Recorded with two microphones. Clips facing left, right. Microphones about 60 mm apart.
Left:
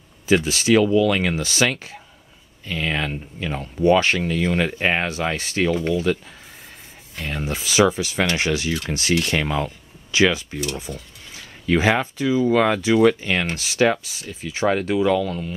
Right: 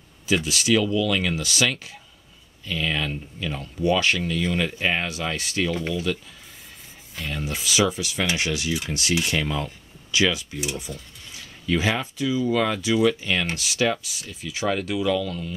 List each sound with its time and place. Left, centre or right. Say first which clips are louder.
0.3 s speech: left 4 dB; left
7.4 s speech: left 5 dB; left
9.2 s speech: left 3 dB; left
10.1 s speech: left 4 dB; left
11.6 s speech: left 5 dB; left